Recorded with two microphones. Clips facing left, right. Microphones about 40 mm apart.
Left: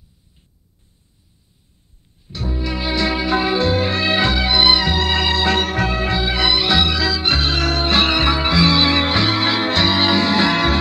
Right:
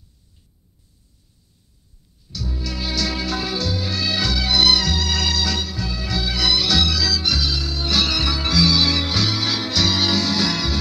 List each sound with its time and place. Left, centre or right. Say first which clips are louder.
2.2 s music: left 5 dB; left
6.1 s music: even; left
7.8 s music: left 4 dB; left